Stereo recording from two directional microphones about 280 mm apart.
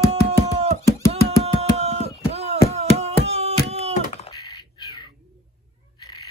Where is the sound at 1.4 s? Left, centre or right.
Right.